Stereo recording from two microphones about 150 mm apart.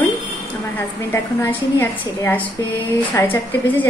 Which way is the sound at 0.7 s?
15° left (ahead or behind).